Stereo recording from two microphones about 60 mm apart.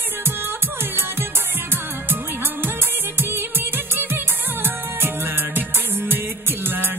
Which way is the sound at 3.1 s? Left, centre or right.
Right.